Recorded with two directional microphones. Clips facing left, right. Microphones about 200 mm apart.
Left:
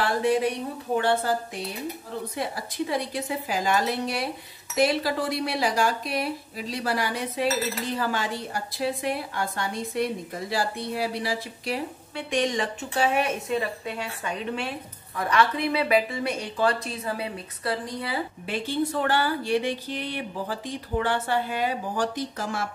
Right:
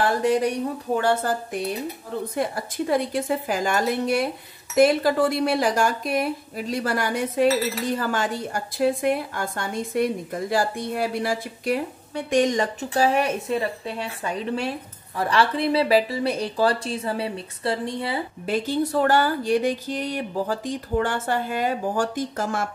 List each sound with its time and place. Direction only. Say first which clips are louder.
1.0 s speech: right 1 dB; 50° right (ahead or behind); by 18.2 s 25° right (ahead or behind)
18.5 s speech: right 4 dB; 40° right (ahead or behind)